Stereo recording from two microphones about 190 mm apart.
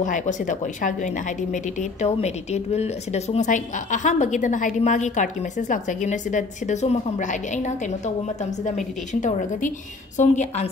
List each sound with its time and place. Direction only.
0.0 s a woman's voice: 40° left (ahead or behind)